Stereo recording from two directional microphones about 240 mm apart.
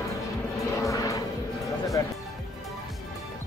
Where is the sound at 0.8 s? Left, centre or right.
Centre.